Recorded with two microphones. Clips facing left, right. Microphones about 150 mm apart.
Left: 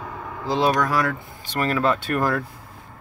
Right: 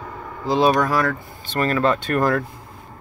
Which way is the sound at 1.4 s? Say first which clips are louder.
Right 2 dB; 10° left (ahead or behind).